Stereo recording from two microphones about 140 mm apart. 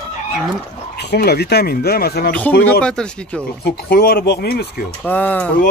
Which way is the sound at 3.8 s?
90° left.